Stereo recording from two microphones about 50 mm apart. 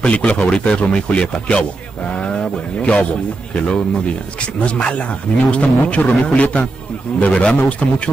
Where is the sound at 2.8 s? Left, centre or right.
Left.